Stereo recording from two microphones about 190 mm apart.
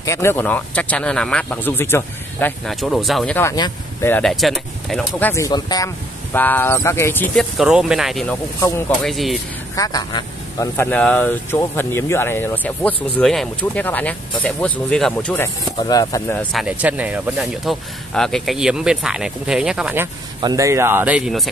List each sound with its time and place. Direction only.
0.0 s speech: 15° left (ahead or behind)
2.6 s speech: centre (ahead or behind)
3.3 s speech: 15° left (ahead or behind)
4.1 s speech: centre (ahead or behind)
5.3 s speech: 20° left (ahead or behind)
6.3 s speech: 10° left (ahead or behind)
7.5 s speech: 5° right (ahead or behind)
8.5 s speech: 15° left (ahead or behind)
9.0 s speech: centre (ahead or behind)
9.8 s speech: 20° left (ahead or behind)
16.5 s speech: 5° right (ahead or behind)
20.3 s speech: 20° right (ahead or behind); by 21.5 s 5° right (ahead or behind)